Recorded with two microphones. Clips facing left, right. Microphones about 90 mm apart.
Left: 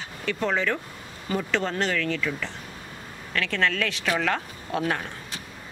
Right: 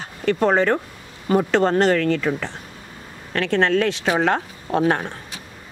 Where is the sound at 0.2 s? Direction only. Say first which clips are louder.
Right 8 dB; 45° right (ahead or behind).